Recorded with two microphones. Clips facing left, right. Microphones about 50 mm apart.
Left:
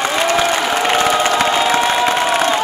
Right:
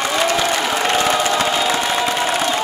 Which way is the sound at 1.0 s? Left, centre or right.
Left.